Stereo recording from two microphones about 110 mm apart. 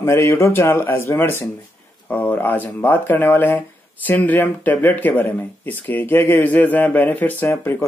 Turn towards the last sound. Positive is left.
turn(degrees=20)  # may be behind; listen again after turning